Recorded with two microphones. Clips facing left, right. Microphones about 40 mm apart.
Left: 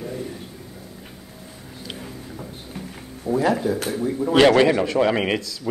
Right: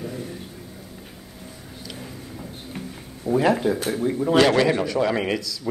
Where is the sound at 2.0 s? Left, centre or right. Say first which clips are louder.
Left 1 dB; centre.